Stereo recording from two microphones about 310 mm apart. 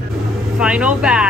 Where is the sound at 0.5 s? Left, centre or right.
Centre.